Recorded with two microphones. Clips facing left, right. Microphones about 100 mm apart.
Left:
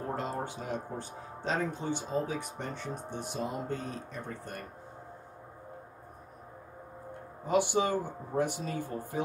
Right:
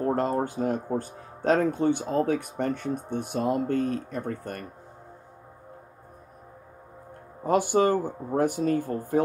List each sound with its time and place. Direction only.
0.0 s speech: 50° right (ahead or behind)
7.4 s speech: 45° right (ahead or behind)